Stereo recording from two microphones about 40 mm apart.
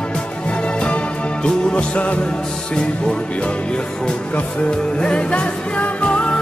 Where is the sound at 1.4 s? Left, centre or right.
Left.